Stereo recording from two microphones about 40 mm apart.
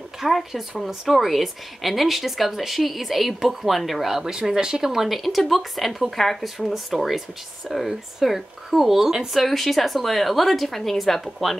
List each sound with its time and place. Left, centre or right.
0.2 s speech: centre
4.2 s speech: centre
5.0 s speech: centre